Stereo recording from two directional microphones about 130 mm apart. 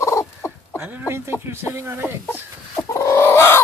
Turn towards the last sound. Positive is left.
turn(degrees=20)  # may be behind; listen again after turning